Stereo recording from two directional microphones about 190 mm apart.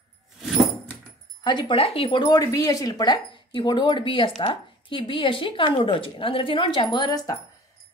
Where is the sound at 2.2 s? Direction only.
20° left (ahead or behind).